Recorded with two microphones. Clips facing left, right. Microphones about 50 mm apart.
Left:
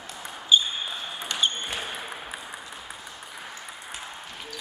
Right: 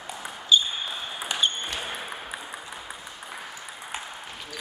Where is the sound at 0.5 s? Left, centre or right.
Centre.